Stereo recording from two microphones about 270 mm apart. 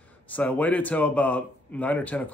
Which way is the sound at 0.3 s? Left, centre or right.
Centre.